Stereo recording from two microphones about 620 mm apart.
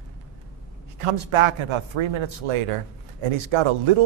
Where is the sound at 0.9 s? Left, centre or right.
Right.